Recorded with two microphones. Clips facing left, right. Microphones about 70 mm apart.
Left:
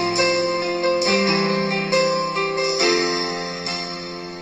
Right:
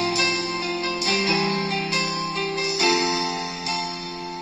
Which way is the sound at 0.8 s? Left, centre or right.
Left.